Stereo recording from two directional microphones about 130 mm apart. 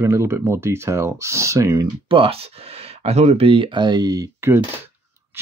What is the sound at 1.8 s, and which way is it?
Speech, 40° right (ahead or behind).